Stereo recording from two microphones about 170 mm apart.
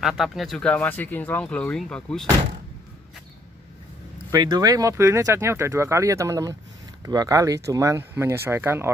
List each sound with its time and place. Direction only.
0.0 s speech: centre (ahead or behind)
4.3 s speech: 25° right (ahead or behind)